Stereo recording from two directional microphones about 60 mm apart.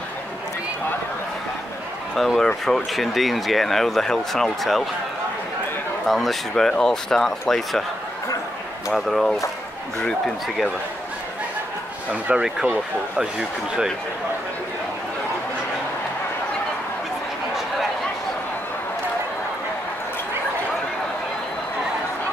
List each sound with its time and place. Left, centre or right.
2.1 s speech: centre
6.0 s speech: centre
8.9 s speech: centre
12.1 s speech: centre
12.4 s speech: centre